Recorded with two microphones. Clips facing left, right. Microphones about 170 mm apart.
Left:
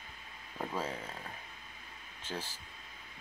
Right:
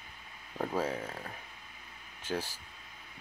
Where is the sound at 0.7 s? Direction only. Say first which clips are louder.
Right 5 dB; 10° right (ahead or behind).